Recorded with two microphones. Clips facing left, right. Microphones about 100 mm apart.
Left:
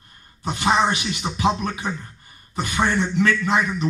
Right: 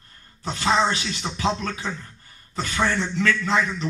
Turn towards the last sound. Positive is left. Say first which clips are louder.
# left 2 dB
turn(degrees=15)  # may be behind; listen again after turning